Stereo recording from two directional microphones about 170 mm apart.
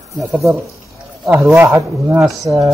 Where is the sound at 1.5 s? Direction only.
10° right (ahead or behind).